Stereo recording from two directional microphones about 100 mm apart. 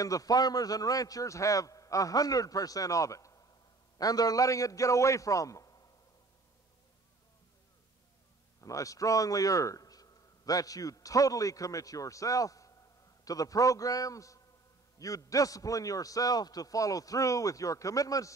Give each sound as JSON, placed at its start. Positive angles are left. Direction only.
{"t": 0.0, "sound": "a man's voice", "side_deg": 35}
{"t": 8.5, "sound": "a man's voice", "side_deg": 35}